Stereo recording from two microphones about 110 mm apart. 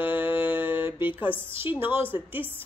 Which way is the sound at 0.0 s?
15° right (ahead or behind).